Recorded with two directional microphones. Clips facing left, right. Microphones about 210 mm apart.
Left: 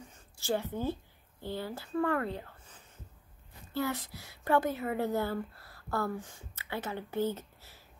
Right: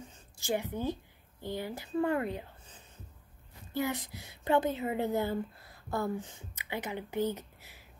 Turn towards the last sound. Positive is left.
turn(degrees=-15)  # may be behind; listen again after turning